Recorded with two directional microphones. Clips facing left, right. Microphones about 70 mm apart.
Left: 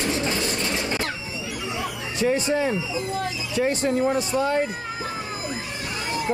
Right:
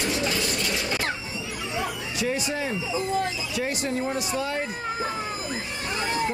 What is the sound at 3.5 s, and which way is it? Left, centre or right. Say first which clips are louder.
Speech: left 9 dB; left.